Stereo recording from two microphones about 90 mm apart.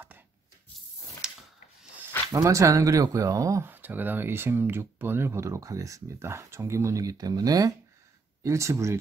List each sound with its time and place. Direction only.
1.2 s a sound: 10° right (ahead or behind)
2.3 s speech: 35° right (ahead or behind)
3.6 s speech: 20° right (ahead or behind)